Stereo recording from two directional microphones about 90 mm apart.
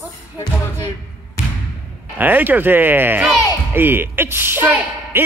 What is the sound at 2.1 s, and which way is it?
Speech, 20° right (ahead or behind).